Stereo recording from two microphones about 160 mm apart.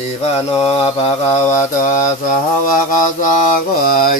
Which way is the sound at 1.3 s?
20° left (ahead or behind).